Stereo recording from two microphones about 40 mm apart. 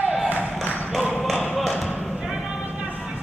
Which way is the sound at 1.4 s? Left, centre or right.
Centre.